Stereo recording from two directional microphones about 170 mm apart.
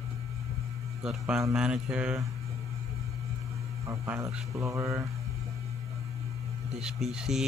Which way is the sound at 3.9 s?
15° right (ahead or behind).